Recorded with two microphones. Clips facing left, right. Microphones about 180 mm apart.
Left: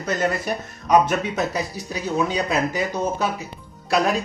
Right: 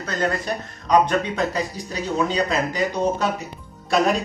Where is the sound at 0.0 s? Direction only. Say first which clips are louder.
Left 1 dB; 10° left (ahead or behind).